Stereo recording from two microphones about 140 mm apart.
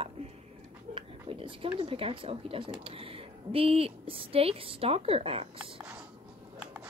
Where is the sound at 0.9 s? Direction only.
40° right (ahead or behind).